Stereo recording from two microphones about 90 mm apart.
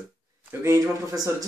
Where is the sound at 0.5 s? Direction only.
30° right (ahead or behind).